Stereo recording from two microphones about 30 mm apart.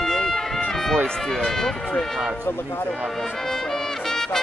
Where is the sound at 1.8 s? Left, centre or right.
Left.